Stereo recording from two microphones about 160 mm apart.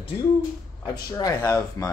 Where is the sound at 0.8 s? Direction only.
20° left (ahead or behind).